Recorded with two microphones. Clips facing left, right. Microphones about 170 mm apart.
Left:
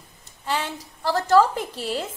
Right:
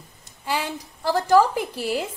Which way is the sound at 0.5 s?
10° right (ahead or behind).